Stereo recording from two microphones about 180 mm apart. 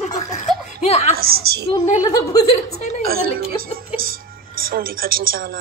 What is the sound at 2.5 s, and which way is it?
Speech, 40° left (ahead or behind).